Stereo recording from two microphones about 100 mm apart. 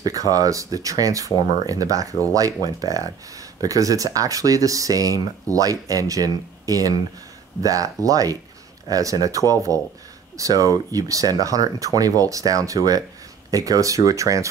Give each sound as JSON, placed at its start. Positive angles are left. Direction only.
{"t": 0.0, "sound": "speech", "side_deg": -35}